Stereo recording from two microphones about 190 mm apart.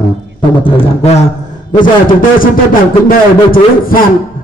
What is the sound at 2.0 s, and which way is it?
A man's voice, 45° left (ahead or behind).